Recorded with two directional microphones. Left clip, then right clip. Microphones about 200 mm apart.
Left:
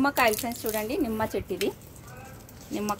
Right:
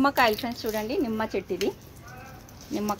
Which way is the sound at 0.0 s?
35° right (ahead or behind).